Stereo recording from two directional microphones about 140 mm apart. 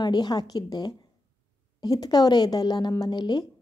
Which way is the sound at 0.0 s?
30° left (ahead or behind).